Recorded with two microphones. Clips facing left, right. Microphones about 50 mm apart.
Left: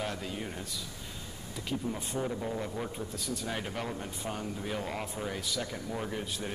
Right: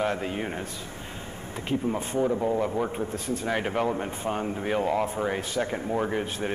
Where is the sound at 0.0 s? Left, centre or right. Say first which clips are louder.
Right 8 dB; right.